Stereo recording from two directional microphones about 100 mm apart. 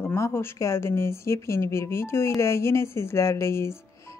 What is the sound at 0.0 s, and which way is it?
Speech, 25° left (ahead or behind).